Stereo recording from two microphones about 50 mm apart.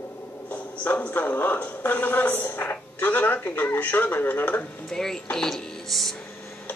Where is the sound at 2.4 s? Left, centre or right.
Left.